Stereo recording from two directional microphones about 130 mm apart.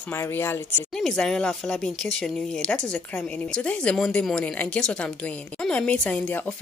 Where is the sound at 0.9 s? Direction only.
5° left (ahead or behind).